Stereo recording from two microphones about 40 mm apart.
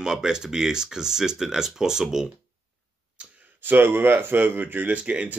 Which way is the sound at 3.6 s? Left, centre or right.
Right.